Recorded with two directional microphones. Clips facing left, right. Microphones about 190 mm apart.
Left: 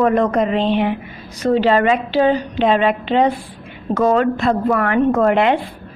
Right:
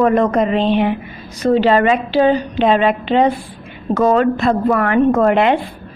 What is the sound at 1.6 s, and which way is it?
Speech, 25° right (ahead or behind).